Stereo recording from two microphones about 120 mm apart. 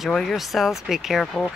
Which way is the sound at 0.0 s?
5° left (ahead or behind).